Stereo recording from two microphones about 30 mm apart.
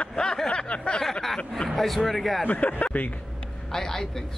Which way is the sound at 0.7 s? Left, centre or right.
Left.